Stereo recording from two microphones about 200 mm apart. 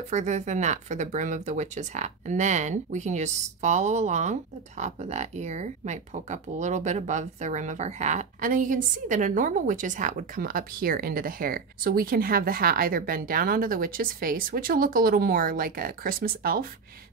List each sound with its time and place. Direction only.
0.1 s speech: 35° right (ahead or behind)